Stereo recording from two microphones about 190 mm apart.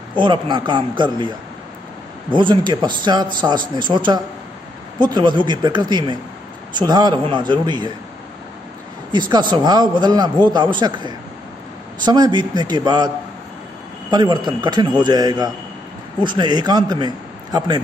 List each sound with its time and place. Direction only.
0.1 s a man's voice: 25° right (ahead or behind)
2.3 s a man's voice: 25° right (ahead or behind)
9.3 s a man's voice: 25° right (ahead or behind)
14.1 s a man's voice: 25° right (ahead or behind)